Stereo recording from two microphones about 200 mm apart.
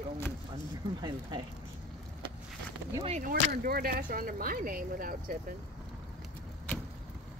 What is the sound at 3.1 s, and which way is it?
Speech, 40° right (ahead or behind).